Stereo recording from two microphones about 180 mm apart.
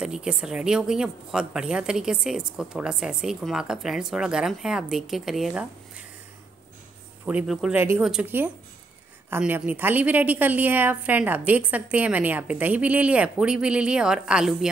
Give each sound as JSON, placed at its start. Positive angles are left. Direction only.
{"t": 0.0, "sound": "a woman's voice", "side_deg": -5}
{"t": 7.2, "sound": "a woman's voice", "side_deg": -5}